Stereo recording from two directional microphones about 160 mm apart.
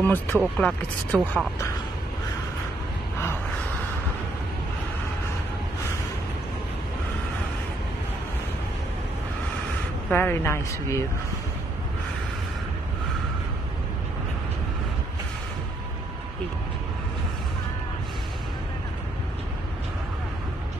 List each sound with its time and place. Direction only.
0.0 s speech: 10° left (ahead or behind)
10.0 s speech: 15° left (ahead or behind)